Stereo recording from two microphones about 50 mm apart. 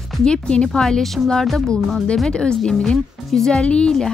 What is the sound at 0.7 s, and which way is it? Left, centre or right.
Speech, centre.